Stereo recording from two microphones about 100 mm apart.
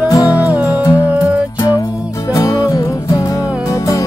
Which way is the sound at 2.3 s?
35° left (ahead or behind).